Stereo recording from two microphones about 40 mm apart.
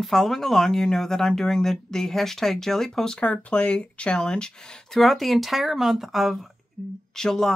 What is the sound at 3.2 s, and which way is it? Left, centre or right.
Speech, left.